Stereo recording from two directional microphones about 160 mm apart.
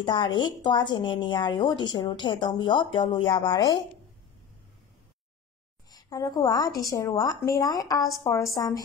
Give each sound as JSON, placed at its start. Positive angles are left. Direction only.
{"t": 0.0, "sound": "speech", "side_deg": 30}
{"t": 5.9, "sound": "speech", "side_deg": 20}